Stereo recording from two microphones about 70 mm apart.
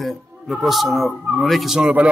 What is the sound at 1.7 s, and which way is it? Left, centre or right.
Speech, centre.